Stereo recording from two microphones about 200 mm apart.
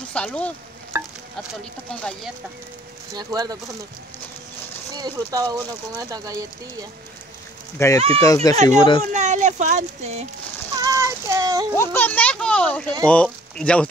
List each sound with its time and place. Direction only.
0.1 s speech: 5° left (ahead or behind)
0.9 s sizzle: 10° right (ahead or behind)
1.5 s speech: 5° left (ahead or behind)
3.2 s speech: 20° right (ahead or behind)
4.9 s speech: 20° right (ahead or behind)
7.8 s speech: 15° left (ahead or behind)
8.6 s speech: 25° left (ahead or behind)
9.1 s speech: 35° right (ahead or behind)
10.8 s a sound: 15° right (ahead or behind)
11.7 s a child's voice: 15° left (ahead or behind)